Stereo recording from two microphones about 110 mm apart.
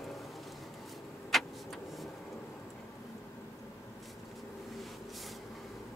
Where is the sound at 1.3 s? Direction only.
Centre (ahead or behind).